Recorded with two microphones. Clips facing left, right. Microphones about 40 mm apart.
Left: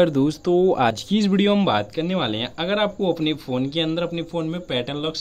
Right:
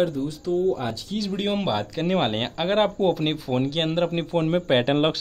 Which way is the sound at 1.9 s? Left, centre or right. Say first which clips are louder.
Even; centre.